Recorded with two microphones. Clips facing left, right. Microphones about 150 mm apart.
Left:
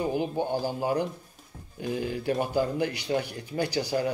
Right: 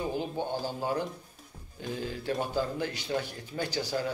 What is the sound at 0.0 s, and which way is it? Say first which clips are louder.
A man's voice: left 4 dB; 10° left (ahead or behind).